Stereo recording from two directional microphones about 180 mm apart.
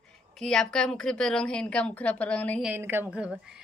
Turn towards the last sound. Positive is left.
turn(degrees=-5)  # may be behind; listen again after turning